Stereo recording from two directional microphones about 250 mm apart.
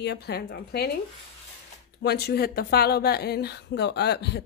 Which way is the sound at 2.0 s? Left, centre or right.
Left.